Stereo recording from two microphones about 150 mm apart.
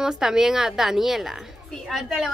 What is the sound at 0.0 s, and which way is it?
A woman's voice, 5° right (ahead or behind).